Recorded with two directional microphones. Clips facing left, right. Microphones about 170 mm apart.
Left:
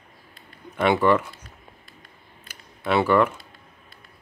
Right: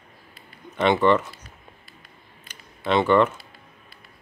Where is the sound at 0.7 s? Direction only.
10° left (ahead or behind).